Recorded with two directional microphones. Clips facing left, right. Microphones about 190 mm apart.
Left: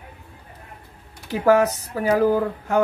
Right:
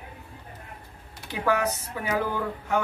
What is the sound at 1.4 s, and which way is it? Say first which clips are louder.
Speech: left 8 dB; 40° left (ahead or behind).